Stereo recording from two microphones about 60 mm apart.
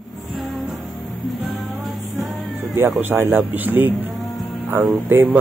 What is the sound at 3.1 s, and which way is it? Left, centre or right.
Speech, right.